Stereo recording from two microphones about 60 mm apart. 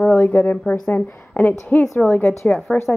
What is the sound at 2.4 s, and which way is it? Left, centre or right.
Speech, left.